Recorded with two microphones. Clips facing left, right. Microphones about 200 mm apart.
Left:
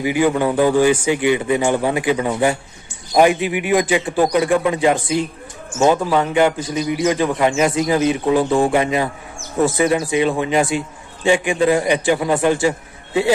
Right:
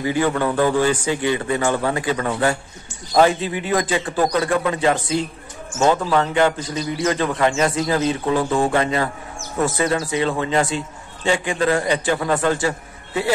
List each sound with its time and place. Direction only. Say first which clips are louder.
0.0 s a man's voice: left 3 dB; 15° left (ahead or behind)